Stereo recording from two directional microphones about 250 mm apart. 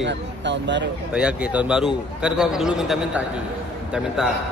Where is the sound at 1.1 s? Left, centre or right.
Centre.